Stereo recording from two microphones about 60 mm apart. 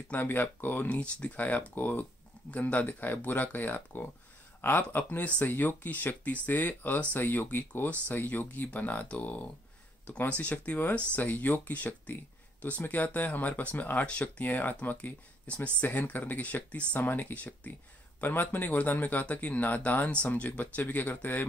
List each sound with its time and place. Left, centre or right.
0.1 s speech: left